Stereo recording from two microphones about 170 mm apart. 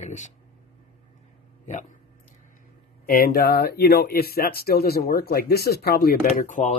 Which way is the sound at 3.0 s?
60° left (ahead or behind).